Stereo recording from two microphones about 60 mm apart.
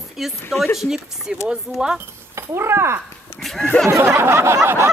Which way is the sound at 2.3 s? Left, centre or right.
Right.